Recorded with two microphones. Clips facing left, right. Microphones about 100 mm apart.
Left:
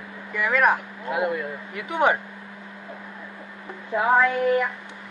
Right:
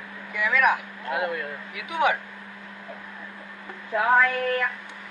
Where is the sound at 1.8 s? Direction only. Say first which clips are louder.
Left 2 dB; 35° left (ahead or behind).